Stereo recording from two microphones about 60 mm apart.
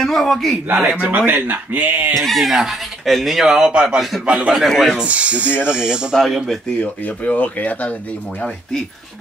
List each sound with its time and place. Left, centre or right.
0.0 s speech: centre
0.7 s speech: right
2.2 s speech: centre
4.6 s speech: centre
4.9 s speech: right
6.1 s speech: centre
6.8 s speech: left